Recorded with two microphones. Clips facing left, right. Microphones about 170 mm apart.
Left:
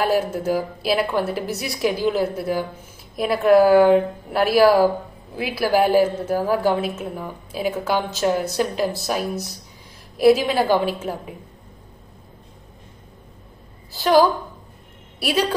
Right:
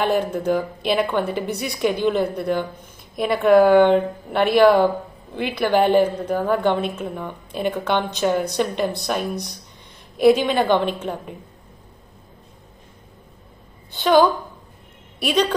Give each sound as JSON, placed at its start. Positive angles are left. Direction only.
{"t": 0.0, "sound": "a woman's voice", "side_deg": 5}
{"t": 13.8, "sound": "a woman's voice", "side_deg": 0}